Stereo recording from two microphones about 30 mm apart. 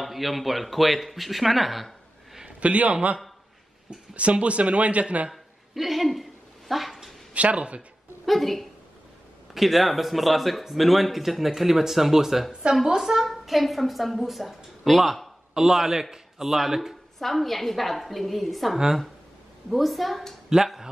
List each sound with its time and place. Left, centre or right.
0.0 s speech: centre
2.6 s speech: right
5.3 s a sound: centre
6.7 s dog: centre
7.3 s speech: right
8.3 s a woman's voice: centre
13.3 s a woman's voice: centre
15.5 s speech: centre
17.2 s a woman's voice: centre
20.4 s speech: centre